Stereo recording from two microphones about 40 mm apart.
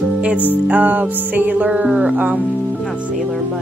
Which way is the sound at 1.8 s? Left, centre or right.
Right.